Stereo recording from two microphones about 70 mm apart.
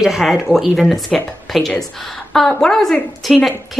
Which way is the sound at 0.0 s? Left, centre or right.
Centre.